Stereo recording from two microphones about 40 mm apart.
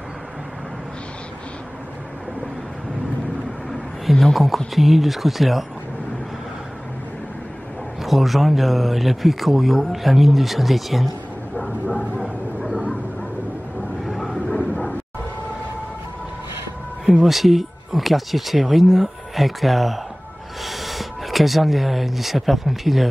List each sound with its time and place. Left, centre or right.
3.7 s a sound: centre
4.7 s speech: centre
8.0 s speech: centre
14.0 s vehicle: centre
14.5 s vehicle: left
17.0 s speech: centre